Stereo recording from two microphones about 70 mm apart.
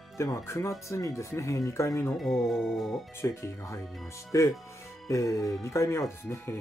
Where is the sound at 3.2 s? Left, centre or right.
Left.